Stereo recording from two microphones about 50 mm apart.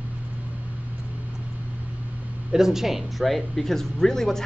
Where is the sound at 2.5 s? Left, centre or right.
Centre.